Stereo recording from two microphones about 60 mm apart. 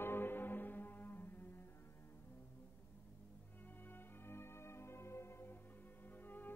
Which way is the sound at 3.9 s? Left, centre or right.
Left.